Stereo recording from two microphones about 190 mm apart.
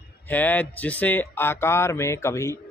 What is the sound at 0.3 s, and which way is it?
Speech, 10° left (ahead or behind).